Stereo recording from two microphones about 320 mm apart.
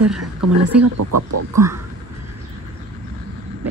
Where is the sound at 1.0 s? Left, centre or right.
Right.